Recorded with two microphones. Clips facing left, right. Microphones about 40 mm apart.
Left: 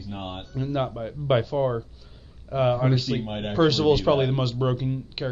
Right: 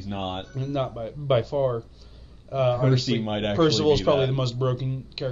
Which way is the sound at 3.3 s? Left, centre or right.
Right.